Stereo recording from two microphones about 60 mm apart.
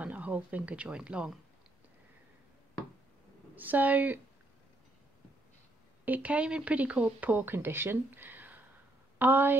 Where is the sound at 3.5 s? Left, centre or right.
Right.